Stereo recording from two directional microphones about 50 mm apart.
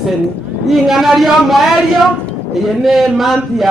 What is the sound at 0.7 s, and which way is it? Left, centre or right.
Speech, centre.